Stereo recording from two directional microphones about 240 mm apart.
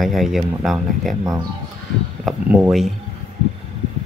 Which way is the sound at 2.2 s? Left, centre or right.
Centre.